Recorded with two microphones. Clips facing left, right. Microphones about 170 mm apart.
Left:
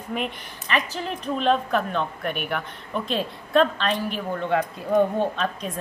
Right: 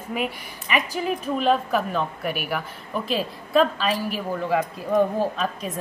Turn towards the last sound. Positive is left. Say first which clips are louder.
# even
turn(degrees=-5)  # may be behind; listen again after turning